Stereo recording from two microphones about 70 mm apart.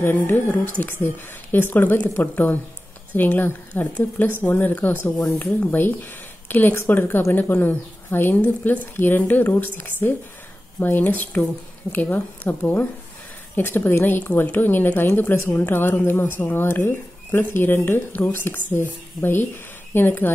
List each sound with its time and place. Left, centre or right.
0.1 s speech: left